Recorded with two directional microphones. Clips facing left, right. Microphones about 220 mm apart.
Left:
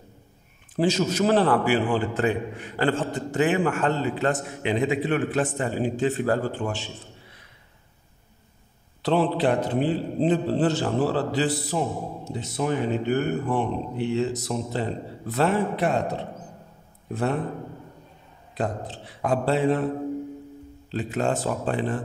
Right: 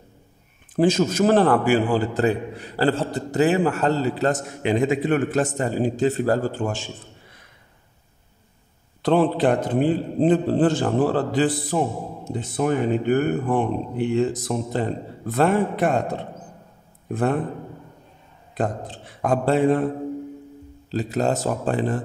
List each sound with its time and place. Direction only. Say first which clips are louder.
0.7 s a man's voice: right 4 dB; 50° right (ahead or behind)
9.0 s speech: right 3 dB; 50° right (ahead or behind)
18.6 s speech: right 3 dB; 50° right (ahead or behind)
20.9 s a man's voice: right 3 dB; 40° right (ahead or behind)